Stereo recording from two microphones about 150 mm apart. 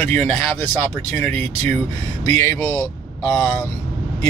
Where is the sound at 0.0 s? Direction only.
10° left (ahead or behind).